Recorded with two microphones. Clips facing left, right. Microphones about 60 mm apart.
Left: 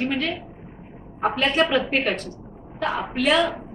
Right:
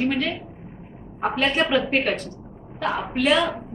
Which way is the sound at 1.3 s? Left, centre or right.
Centre.